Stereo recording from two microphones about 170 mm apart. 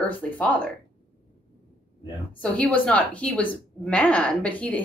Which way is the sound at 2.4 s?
10° left (ahead or behind).